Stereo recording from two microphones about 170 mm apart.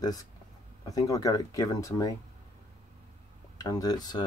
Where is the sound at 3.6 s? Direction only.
20° left (ahead or behind).